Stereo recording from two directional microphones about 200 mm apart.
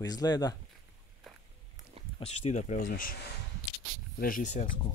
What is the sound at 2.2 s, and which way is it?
Speech, 35° left (ahead or behind).